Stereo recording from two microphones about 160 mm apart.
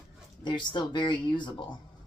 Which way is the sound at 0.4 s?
25° left (ahead or behind).